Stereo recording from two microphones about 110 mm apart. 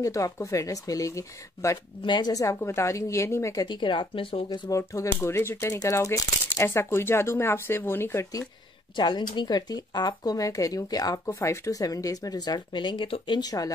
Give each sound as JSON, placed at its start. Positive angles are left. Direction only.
{"t": 0.0, "sound": "speech", "side_deg": 30}
{"t": 2.0, "sound": "speech", "side_deg": 40}
{"t": 2.5, "sound": "speech", "side_deg": 25}
{"t": 3.6, "sound": "speech", "side_deg": 45}
{"t": 4.5, "sound": "speech", "side_deg": 35}
{"t": 8.9, "sound": "speech", "side_deg": 45}
{"t": 11.2, "sound": "speech", "side_deg": 25}